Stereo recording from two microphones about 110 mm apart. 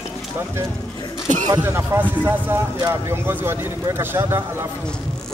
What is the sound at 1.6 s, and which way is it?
Speech, 20° right (ahead or behind).